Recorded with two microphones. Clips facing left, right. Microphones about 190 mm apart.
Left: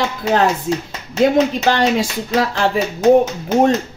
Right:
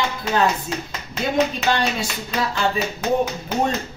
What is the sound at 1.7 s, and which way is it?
Speech, 85° left.